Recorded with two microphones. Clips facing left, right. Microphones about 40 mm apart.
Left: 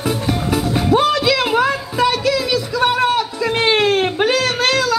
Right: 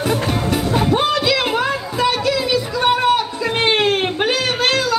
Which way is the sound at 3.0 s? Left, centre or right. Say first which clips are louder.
Even; centre.